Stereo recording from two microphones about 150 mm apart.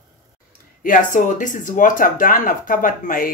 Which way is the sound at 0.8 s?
60° left (ahead or behind).